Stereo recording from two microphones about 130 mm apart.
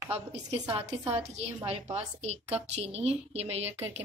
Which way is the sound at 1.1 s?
55° right (ahead or behind).